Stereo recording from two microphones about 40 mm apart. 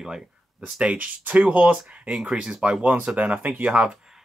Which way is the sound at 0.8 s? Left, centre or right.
Right.